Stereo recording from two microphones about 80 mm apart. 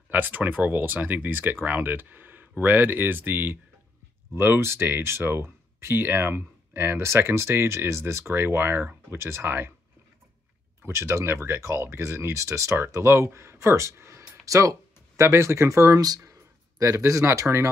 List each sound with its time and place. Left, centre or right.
0.1 s speech: right
10.8 s speech: right